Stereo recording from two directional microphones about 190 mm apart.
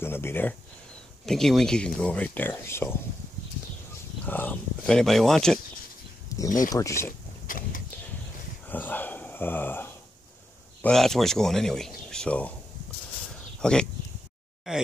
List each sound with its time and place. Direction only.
0.0 s speech: 10° left (ahead or behind)
4.3 s speech: 10° left (ahead or behind)
6.2 s a sound: 15° left (ahead or behind)
6.7 s speech: 15° left (ahead or behind)
7.4 s vehicle: 45° left (ahead or behind)
8.6 s dog: 10° left (ahead or behind)
10.8 s speech: 5° left (ahead or behind)
13.6 s a sound: 5° left (ahead or behind)
14.7 s speech: 5° right (ahead or behind)